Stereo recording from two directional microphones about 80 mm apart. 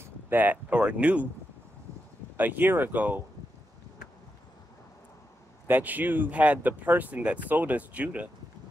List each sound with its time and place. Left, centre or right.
0.0 s speech: right
2.3 s speech: right
5.7 s speech: right